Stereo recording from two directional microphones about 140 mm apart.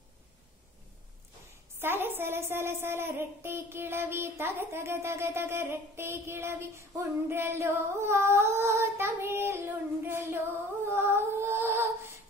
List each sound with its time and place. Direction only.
1.8 s a woman's voice: 15° right (ahead or behind)
10.9 s music: 15° right (ahead or behind)